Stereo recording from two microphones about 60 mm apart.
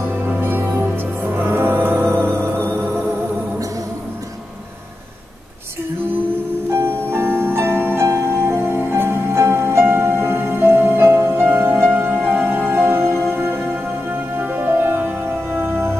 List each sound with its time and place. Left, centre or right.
0.4 s music: right
6.7 s music: right